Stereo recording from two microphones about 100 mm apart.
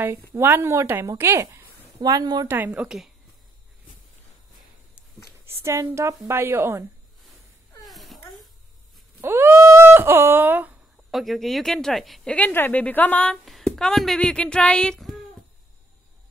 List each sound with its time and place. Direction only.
0.3 s a woman's voice: 25° right (ahead or behind)
2.0 s speech: 45° right (ahead or behind)
2.4 s a woman's voice: 20° right (ahead or behind)
5.6 s a woman's voice: 25° right (ahead or behind)
7.8 s a sound: centre (ahead or behind)
9.2 s speech: 20° right (ahead or behind)
11.1 s speech: centre (ahead or behind)
12.3 s speech: 15° left (ahead or behind)